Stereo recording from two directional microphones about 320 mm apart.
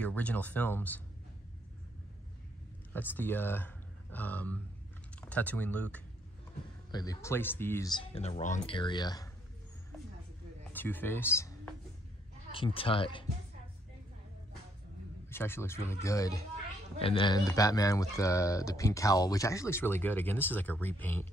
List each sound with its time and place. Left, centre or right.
0.0 s speech: centre
3.2 s speech: centre
10.7 s speech: centre
15.2 s speech: centre